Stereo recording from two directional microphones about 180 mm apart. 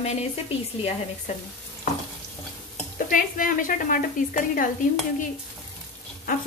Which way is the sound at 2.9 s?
50° left (ahead or behind).